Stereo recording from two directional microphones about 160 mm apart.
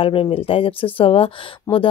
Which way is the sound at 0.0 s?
35° left (ahead or behind).